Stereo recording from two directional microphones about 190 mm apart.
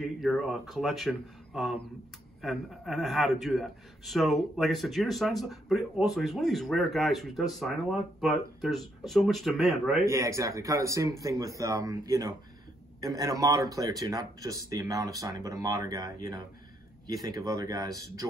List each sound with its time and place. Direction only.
0.0 s a man's voice: centre (ahead or behind)
10.0 s speech: 15° right (ahead or behind)